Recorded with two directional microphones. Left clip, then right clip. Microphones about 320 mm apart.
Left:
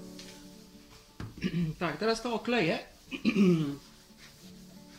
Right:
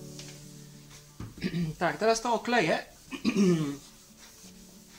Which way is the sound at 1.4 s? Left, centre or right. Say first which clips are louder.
Right 4 dB; centre.